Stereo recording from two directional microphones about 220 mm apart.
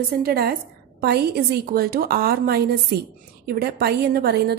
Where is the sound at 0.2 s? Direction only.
45° right (ahead or behind).